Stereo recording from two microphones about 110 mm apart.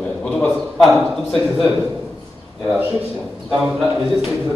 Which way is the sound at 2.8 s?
20° right (ahead or behind).